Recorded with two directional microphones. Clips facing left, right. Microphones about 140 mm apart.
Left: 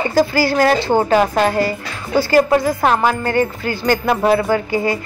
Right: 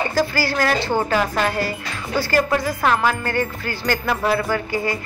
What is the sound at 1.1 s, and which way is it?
Music, 25° left (ahead or behind).